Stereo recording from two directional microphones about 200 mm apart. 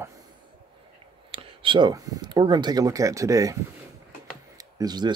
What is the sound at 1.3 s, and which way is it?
Speech, 25° right (ahead or behind).